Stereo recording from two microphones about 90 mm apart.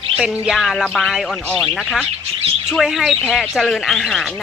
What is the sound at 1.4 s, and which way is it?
Speech, 15° left (ahead or behind).